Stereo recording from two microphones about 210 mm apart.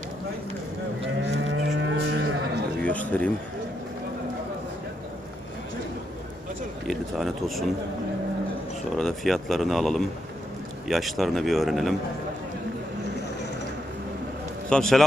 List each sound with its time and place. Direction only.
1.0 s moo: 55° right (ahead or behind)
2.8 s a sound: 5° left (ahead or behind)
6.9 s speech: centre (ahead or behind)
8.9 s speech: centre (ahead or behind)
14.7 s speech: centre (ahead or behind)